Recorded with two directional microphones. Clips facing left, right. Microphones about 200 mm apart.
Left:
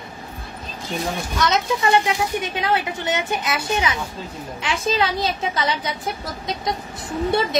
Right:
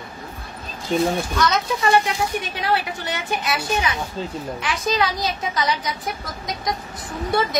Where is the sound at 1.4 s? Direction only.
20° left (ahead or behind).